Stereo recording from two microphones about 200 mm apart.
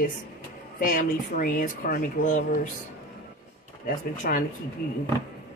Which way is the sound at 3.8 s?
45° left (ahead or behind).